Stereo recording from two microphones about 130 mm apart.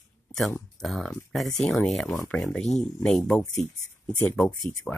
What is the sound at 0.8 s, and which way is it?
Speech, centre (ahead or behind).